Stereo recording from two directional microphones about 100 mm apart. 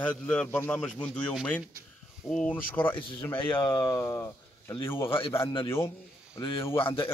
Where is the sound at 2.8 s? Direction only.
40° left (ahead or behind).